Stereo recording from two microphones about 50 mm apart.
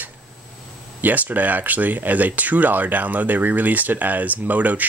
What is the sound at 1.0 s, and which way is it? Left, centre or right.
Speech, right.